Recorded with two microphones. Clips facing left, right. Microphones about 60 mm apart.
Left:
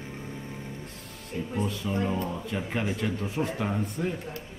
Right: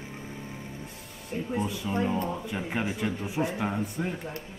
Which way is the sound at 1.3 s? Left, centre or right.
Right.